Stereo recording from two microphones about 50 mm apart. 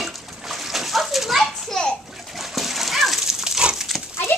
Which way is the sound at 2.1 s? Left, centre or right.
Centre.